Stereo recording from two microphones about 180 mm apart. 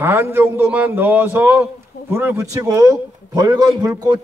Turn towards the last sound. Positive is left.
turn(degrees=-20)  # may be behind; listen again after turning